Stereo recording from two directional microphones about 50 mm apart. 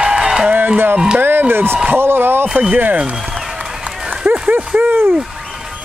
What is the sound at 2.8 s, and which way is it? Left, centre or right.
Speech, right.